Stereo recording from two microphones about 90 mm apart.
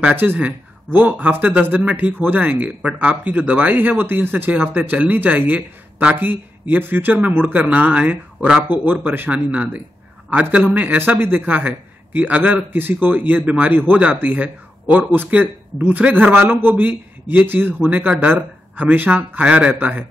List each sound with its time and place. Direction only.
0.0 s a man's voice: 20° right (ahead or behind)